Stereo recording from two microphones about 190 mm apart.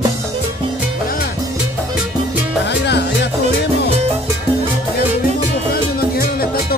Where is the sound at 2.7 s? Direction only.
65° left (ahead or behind).